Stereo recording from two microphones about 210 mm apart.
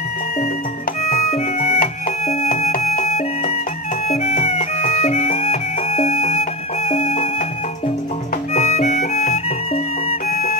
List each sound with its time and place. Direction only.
1.1 s music: 30° left (ahead or behind)
2.5 s music: 40° left (ahead or behind)
4.1 s music: 30° left (ahead or behind)
8.5 s music: 30° left (ahead or behind)